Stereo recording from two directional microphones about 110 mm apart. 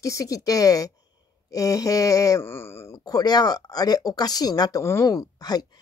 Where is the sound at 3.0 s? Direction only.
35° left (ahead or behind).